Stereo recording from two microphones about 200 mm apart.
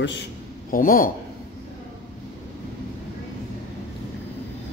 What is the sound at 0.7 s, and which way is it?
Speech, 45° left (ahead or behind).